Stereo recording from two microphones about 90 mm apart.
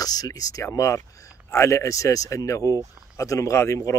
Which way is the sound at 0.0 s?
45° left (ahead or behind).